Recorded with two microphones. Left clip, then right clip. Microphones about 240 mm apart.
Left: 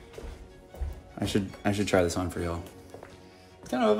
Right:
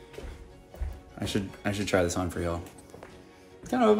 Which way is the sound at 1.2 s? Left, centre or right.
Centre.